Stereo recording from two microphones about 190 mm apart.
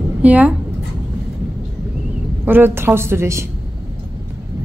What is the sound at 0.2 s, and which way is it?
Speech, 10° right (ahead or behind).